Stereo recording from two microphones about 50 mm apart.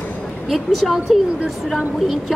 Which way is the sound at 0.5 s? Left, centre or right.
Centre.